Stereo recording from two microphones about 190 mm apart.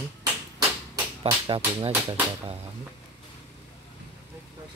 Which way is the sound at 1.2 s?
25° right (ahead or behind).